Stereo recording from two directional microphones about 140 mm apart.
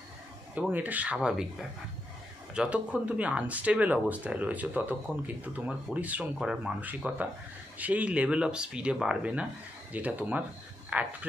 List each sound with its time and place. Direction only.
0.6 s speech: 10° right (ahead or behind)
2.5 s speech: 5° right (ahead or behind)